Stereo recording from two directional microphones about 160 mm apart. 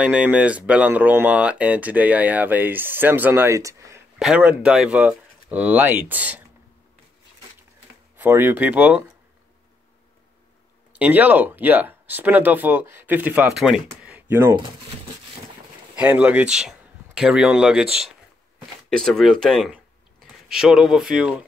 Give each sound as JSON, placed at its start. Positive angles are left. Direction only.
{"t": 0.0, "sound": "speech", "side_deg": -10}
{"t": 4.2, "sound": "speech", "side_deg": -5}
{"t": 8.2, "sound": "speech", "side_deg": -15}
{"t": 11.0, "sound": "speech", "side_deg": -10}
{"t": 16.0, "sound": "speech", "side_deg": -10}
{"t": 18.9, "sound": "speech", "side_deg": 5}